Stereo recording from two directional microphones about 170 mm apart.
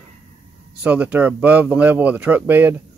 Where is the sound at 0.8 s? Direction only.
10° right (ahead or behind).